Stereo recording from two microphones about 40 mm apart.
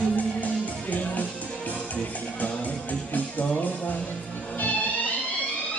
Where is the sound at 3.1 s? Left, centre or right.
Left.